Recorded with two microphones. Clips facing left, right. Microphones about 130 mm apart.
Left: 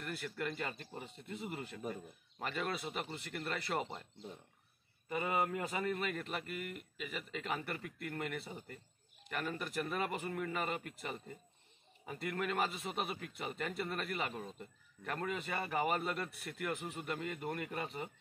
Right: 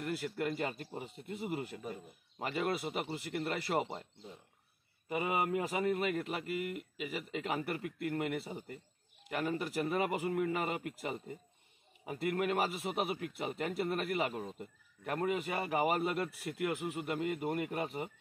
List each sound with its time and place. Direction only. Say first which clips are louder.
0.0 s a man's voice: right 5 dB; 20° right (ahead or behind)
5.1 s a man's voice: right 2 dB; 10° right (ahead or behind)